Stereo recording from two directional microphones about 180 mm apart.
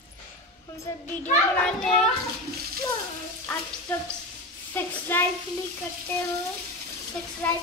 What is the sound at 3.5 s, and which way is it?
Frying, 10° left (ahead or behind).